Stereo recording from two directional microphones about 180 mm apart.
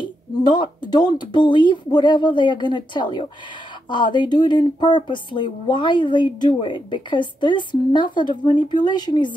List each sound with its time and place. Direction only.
0.0 s speech: 25° left (ahead or behind)